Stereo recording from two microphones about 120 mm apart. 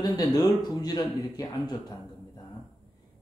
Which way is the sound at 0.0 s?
35° left (ahead or behind).